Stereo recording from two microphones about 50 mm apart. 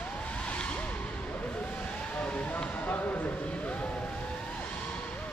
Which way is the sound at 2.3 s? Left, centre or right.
Left.